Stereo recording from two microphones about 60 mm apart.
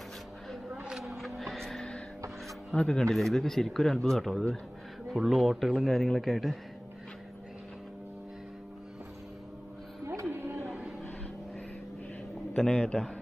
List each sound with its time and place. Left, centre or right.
1.0 s music: centre
2.7 s a man's voice: centre
10.4 s a sound: right
12.5 s a man's voice: centre